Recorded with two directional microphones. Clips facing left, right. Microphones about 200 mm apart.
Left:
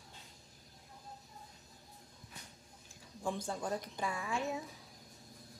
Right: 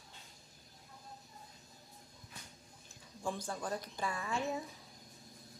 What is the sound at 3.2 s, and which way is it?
A woman's voice, 25° left (ahead or behind).